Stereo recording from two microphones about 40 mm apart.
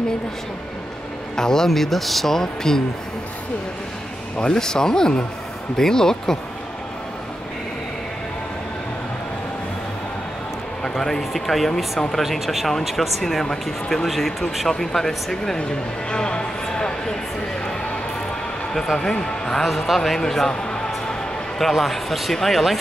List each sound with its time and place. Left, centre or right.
1.3 s speech: centre
4.4 s speech: centre
10.8 s speech: centre
13.2 s speech: centre
18.7 s speech: centre
20.6 s music: centre
21.5 s speech: centre